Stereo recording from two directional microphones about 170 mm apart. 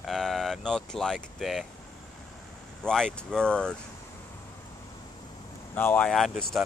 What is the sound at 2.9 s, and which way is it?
Speech, 5° left (ahead or behind).